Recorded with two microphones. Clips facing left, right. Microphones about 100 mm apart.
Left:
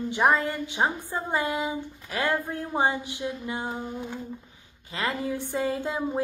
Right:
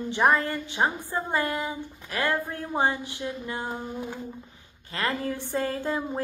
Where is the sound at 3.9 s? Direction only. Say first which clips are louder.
Even; 10° right (ahead or behind).